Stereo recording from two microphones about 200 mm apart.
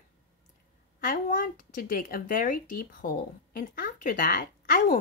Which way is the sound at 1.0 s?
45° left (ahead or behind).